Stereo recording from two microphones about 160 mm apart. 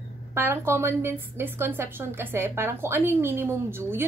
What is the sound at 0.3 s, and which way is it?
A woman's voice, 15° right (ahead or behind).